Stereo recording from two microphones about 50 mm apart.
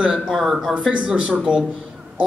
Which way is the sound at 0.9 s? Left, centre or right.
Right.